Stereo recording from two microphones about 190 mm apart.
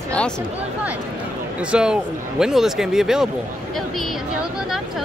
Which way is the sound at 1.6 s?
5° right (ahead or behind).